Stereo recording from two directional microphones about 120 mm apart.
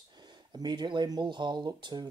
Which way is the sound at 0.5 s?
35° right (ahead or behind).